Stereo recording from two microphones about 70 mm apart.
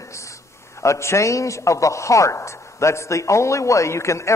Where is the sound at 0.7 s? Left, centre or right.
Left.